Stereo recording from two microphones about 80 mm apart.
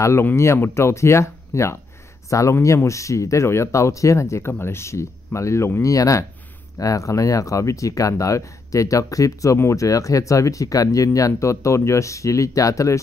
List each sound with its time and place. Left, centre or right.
0.0 s speech: left